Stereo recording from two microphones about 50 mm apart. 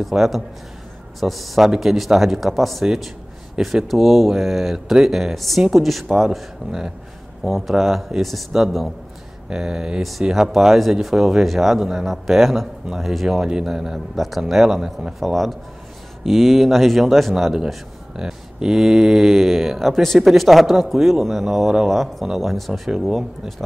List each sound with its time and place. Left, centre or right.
0.0 s speech: centre
9.5 s a man's voice: centre
13.5 s a man's voice: centre